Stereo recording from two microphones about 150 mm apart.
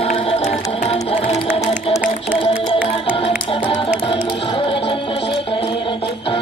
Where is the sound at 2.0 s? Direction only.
10° right (ahead or behind).